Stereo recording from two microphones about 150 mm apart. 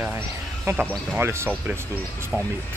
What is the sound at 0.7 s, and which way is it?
Speech, 15° right (ahead or behind).